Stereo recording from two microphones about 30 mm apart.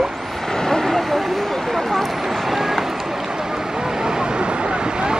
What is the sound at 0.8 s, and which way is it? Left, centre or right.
Vehicle, centre.